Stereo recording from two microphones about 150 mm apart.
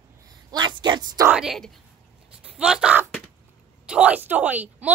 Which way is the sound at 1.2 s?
5° right (ahead or behind).